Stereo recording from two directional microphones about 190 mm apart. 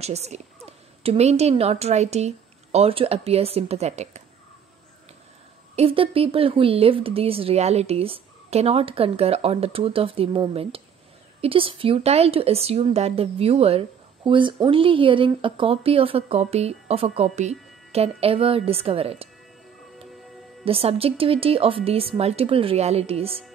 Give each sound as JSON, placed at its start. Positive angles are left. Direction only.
{"t": 0.0, "sound": "speech", "side_deg": -35}
{"t": 5.8, "sound": "speech", "side_deg": -30}
{"t": 20.6, "sound": "speech", "side_deg": -30}